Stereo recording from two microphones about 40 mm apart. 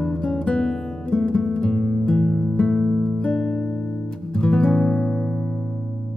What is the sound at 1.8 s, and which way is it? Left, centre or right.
Music, centre.